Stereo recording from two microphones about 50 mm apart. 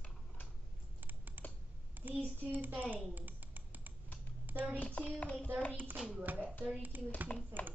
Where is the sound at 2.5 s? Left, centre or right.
Right.